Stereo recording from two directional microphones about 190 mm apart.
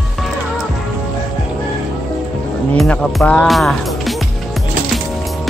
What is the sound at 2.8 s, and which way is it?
Speech, 5° left (ahead or behind).